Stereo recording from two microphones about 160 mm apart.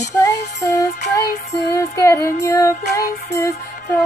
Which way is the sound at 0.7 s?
20° left (ahead or behind).